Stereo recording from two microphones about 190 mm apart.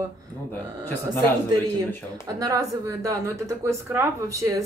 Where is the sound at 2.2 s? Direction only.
20° right (ahead or behind).